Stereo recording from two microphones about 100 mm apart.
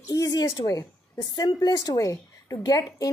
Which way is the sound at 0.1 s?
40° left (ahead or behind).